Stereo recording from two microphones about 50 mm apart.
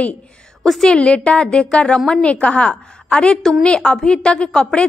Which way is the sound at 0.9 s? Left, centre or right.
Left.